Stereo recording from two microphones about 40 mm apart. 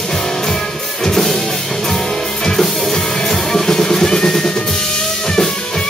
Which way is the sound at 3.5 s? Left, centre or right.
Centre.